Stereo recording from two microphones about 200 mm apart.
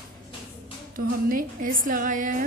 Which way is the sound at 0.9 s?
45° right (ahead or behind).